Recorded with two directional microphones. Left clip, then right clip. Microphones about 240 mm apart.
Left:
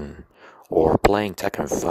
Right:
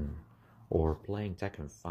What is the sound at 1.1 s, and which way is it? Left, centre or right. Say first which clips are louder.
Speech: left 16 dB; left.